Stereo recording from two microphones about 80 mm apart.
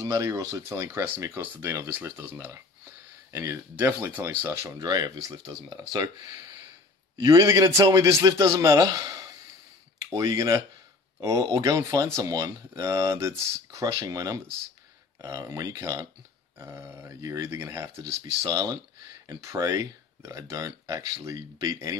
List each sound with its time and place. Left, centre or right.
0.0 s speech: right
4.7 s speech: right
7.2 s speech: right
18.2 s speech: right